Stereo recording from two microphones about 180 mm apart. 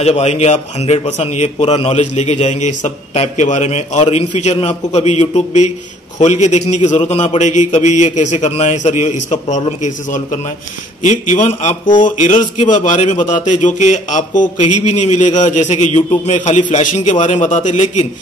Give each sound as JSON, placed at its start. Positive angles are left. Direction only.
{"t": 0.0, "sound": "a man's voice", "side_deg": 35}